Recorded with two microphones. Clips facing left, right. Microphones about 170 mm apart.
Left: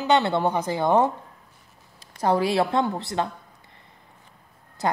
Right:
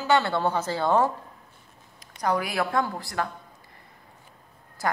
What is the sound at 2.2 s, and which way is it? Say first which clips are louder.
A woman's voice: left 5 dB; 30° left (ahead or behind).